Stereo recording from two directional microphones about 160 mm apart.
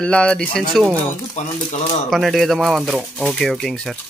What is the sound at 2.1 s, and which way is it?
Speech, centre (ahead or behind).